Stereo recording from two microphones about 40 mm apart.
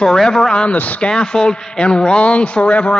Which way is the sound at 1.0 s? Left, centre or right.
Left.